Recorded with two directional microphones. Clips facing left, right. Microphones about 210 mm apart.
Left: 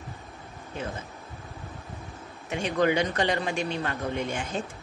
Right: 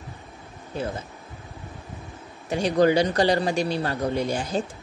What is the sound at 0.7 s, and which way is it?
Speech, 35° right (ahead or behind).